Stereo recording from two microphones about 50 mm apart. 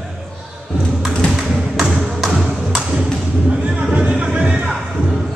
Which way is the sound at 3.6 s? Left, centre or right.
Right.